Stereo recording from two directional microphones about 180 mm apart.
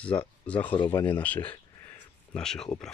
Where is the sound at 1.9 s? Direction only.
5° left (ahead or behind).